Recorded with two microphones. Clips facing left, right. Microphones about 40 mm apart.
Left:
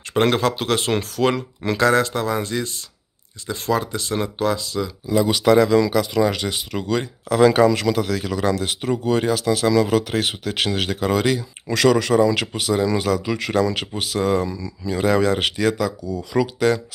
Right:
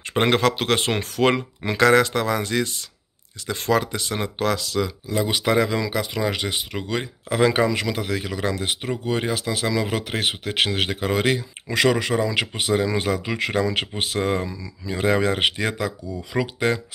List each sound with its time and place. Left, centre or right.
0.3 s speech: right
4.5 s speech: right
5.0 s speech: centre
12.5 s speech: right
14.5 s speech: centre